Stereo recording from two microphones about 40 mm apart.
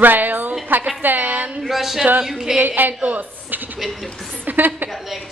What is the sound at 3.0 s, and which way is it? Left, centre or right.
A woman's voice, right.